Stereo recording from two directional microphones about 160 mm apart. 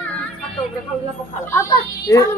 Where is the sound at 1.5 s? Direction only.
20° left (ahead or behind).